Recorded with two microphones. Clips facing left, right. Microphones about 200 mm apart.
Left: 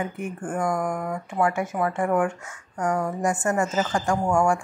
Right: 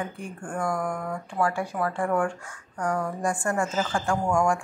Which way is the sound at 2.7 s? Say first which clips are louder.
Left 3 dB; 20° left (ahead or behind).